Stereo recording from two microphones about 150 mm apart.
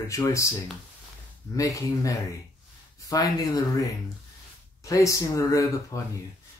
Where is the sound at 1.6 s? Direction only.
20° left (ahead or behind).